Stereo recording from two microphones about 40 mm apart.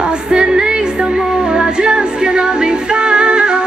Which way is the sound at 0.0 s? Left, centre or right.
Right.